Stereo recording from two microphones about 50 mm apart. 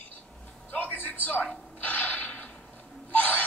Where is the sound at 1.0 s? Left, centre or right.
Left.